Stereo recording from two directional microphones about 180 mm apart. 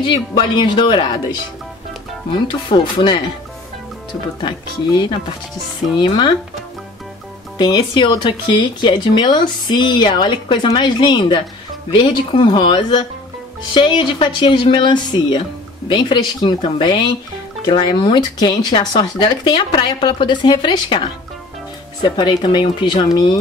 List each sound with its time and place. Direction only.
0.0 s speech: 25° left (ahead or behind)
2.7 s speech: 25° left (ahead or behind)
4.4 s speech: 25° left (ahead or behind)
7.5 s speech: 25° left (ahead or behind)
22.0 s speech: 25° left (ahead or behind)